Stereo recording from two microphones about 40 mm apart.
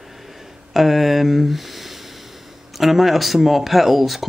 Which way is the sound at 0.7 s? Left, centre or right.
Centre.